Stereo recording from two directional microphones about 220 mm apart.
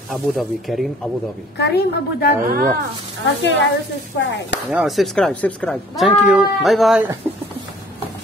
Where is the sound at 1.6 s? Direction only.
45° left (ahead or behind).